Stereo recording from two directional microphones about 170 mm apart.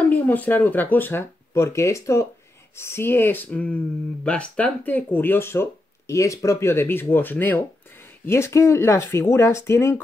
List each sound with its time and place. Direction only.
0.1 s speech: 10° left (ahead or behind)